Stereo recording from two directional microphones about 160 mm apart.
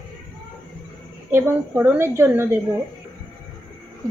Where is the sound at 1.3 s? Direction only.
10° right (ahead or behind).